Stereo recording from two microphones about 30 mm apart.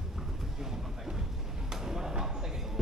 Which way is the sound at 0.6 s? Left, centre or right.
Centre.